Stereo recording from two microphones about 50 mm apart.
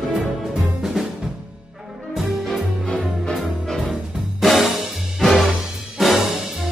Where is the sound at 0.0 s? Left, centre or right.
Centre.